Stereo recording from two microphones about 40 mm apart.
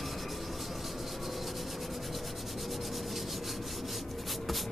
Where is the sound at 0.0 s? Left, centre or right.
Centre.